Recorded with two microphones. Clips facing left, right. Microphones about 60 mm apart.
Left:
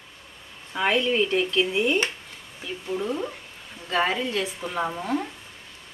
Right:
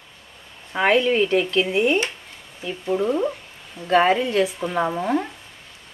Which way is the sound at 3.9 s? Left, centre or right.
Right.